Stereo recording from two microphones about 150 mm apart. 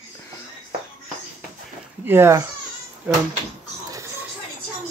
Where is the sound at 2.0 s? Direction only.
15° right (ahead or behind).